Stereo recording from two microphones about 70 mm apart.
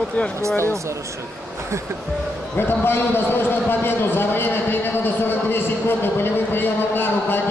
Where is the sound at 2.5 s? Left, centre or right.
Left.